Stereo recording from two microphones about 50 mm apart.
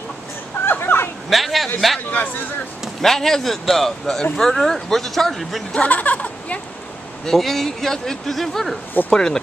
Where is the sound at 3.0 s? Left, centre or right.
Centre.